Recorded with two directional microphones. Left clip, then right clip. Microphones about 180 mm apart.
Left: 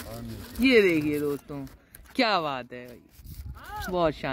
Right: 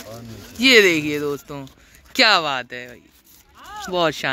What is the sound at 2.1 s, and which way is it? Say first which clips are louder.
Speech: right 9 dB; 5° left (ahead or behind).